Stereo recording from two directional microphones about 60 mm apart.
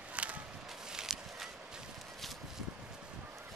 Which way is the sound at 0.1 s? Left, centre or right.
Right.